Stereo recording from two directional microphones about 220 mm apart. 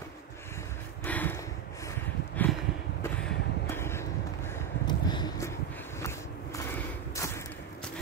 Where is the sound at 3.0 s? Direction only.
10° left (ahead or behind).